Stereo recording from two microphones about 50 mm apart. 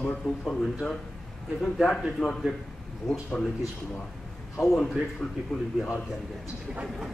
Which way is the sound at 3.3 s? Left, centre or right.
Centre.